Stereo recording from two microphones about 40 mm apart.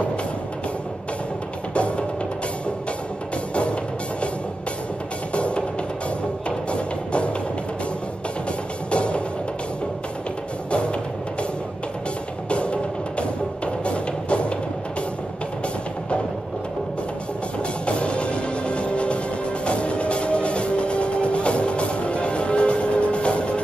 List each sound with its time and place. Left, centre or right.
1.7 s music: left
5.3 s music: left
6.7 s music: left
8.9 s music: left
10.7 s music: left
12.4 s music: left
17.8 s music: left